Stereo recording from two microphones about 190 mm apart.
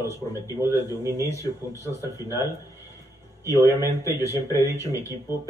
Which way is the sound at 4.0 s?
15° right (ahead or behind).